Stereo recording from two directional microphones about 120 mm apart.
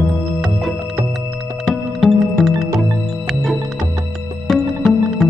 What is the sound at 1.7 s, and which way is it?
Music, centre (ahead or behind).